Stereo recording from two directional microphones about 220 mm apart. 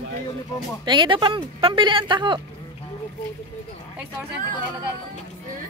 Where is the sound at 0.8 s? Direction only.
20° right (ahead or behind).